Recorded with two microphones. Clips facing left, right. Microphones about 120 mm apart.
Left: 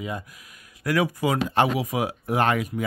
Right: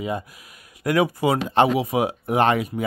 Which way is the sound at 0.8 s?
10° right (ahead or behind).